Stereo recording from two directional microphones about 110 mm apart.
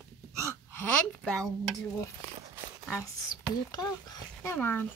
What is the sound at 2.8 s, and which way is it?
Whispering, 15° left (ahead or behind).